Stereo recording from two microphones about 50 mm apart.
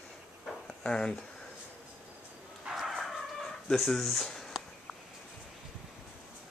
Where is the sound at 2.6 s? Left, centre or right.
Centre.